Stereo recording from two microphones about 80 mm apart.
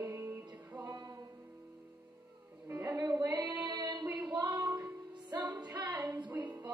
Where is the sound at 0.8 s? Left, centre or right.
Right.